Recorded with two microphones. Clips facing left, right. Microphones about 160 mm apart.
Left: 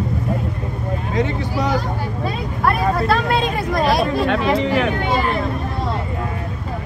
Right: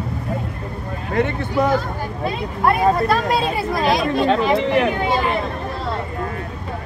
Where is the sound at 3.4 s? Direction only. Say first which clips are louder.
Left 1 dB; 5° right (ahead or behind).